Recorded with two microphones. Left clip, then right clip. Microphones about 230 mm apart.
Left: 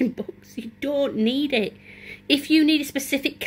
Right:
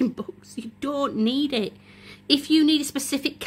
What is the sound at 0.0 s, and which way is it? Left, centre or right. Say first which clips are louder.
A woman's voice: left 1 dB; right.